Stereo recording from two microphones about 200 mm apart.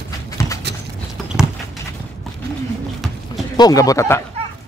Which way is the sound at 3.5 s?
20° left (ahead or behind).